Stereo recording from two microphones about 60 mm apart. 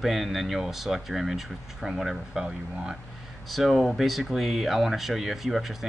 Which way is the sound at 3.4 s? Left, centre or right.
Centre.